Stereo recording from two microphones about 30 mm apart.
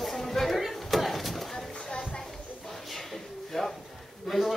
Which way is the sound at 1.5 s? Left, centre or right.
Left.